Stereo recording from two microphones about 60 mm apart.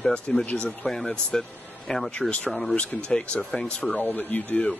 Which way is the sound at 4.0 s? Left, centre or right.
Left.